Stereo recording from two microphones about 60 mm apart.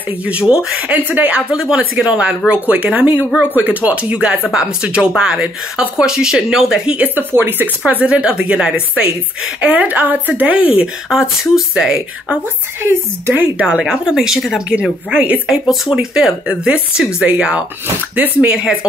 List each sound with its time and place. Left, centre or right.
0.3 s speech: centre
0.7 s speech: right
1.5 s speech: centre
7.0 s speech: right
8.0 s speech: centre
9.6 s speech: right
11.1 s speech: centre
13.3 s speech: right
13.7 s speech: centre
14.7 s speech: centre
15.6 s speech: centre